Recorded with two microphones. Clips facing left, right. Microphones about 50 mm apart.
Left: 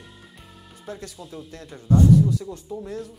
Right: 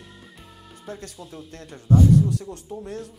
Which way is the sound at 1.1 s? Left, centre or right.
Centre.